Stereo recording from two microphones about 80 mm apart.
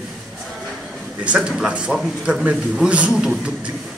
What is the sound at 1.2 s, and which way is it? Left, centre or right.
A man's voice, centre.